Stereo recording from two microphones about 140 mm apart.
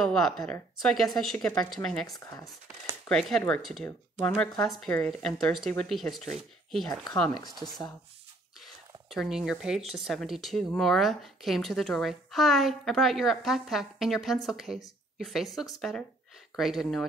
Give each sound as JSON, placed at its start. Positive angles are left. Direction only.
{"t": 0.0, "sound": "speech", "side_deg": 5}
{"t": 2.0, "sound": "speech", "side_deg": 25}
{"t": 3.1, "sound": "speech", "side_deg": 0}
{"t": 9.1, "sound": "speech", "side_deg": 0}